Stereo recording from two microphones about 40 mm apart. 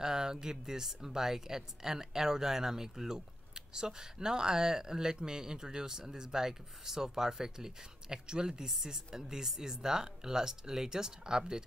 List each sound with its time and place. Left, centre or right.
0.0 s speech: centre